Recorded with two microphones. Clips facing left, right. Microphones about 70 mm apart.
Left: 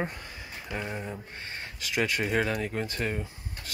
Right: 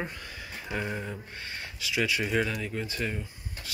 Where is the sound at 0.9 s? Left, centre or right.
Centre.